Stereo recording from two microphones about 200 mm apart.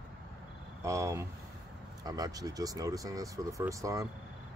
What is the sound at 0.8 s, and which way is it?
Speech, 15° right (ahead or behind).